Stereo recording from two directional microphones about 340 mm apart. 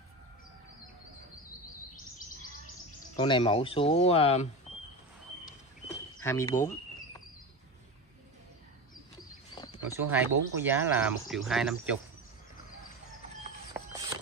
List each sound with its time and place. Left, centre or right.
3.2 s speech: centre
6.2 s speech: centre
9.5 s a sound: centre
10.0 s speech: centre